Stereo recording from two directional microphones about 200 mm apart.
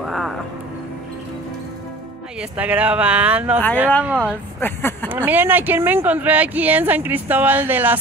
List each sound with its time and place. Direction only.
0.0 s a sound: centre (ahead or behind)
2.5 s speech: 5° right (ahead or behind)
4.6 s speech: 10° left (ahead or behind)
5.1 s speech: 10° right (ahead or behind)